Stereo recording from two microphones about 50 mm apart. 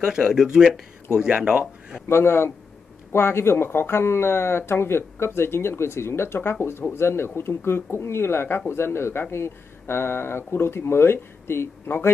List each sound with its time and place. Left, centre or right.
0.0 s speech: centre
2.0 s speech: left